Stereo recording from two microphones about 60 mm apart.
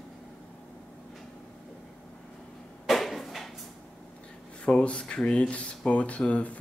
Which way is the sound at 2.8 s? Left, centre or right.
Centre.